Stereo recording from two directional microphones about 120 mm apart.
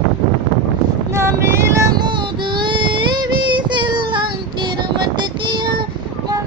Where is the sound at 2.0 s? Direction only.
40° right (ahead or behind).